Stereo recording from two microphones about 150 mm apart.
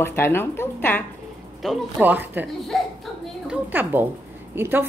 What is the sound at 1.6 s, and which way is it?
Speech, centre (ahead or behind).